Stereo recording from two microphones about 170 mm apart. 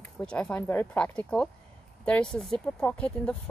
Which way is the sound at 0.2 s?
5° left (ahead or behind).